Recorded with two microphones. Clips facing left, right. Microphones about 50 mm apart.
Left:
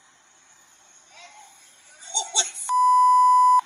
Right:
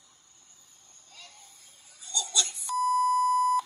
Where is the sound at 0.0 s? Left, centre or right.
Left.